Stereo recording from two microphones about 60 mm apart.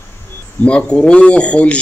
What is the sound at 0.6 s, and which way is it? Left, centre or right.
Speech, centre.